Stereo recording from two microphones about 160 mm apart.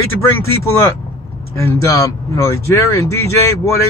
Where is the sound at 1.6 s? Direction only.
15° left (ahead or behind).